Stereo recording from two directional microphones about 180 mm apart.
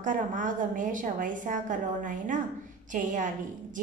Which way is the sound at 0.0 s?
45° right (ahead or behind).